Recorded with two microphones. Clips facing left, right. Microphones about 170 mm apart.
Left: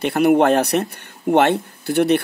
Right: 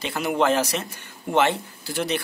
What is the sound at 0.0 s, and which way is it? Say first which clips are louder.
A man's voice: left 8 dB; 60° left (ahead or behind).